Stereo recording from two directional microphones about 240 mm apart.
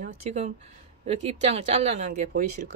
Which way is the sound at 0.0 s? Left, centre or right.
Right.